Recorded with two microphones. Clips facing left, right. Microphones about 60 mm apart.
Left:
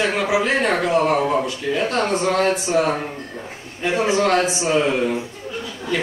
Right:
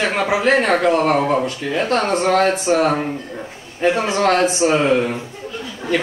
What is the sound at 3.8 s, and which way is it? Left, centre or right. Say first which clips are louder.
Speech: right 2 dB; right.